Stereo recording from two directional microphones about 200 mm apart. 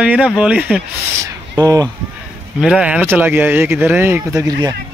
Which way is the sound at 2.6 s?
5° right (ahead or behind).